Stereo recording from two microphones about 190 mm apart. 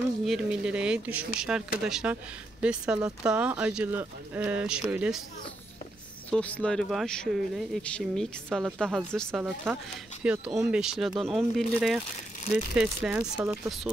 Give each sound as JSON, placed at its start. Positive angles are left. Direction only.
{"t": 0.2, "sound": "speech", "side_deg": 0}
{"t": 6.3, "sound": "speech", "side_deg": 5}
{"t": 13.2, "sound": "speech", "side_deg": -15}